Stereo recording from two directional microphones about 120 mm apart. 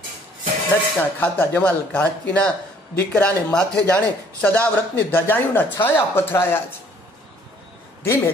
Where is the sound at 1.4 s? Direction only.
15° left (ahead or behind).